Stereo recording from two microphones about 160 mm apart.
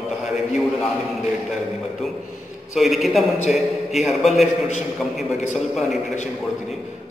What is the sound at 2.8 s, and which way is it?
A man's voice, centre (ahead or behind).